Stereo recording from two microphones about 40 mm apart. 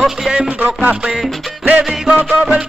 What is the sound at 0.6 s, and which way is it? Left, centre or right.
Music, right.